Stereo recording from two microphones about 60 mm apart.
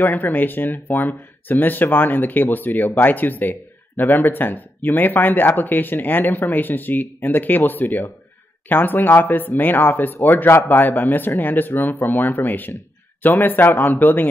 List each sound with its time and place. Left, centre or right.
0.0 s speech: left